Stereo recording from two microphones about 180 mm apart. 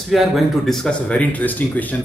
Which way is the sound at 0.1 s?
Centre (ahead or behind).